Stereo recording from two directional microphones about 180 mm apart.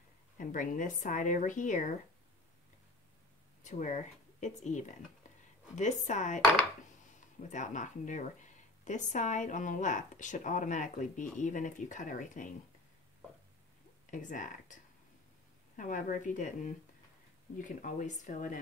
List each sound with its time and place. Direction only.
0.4 s speech: 45° left (ahead or behind)
3.6 s a woman's voice: 40° left (ahead or behind)
7.4 s speech: 40° left (ahead or behind)
14.1 s speech: 45° left (ahead or behind)
17.6 s speech: 45° left (ahead or behind)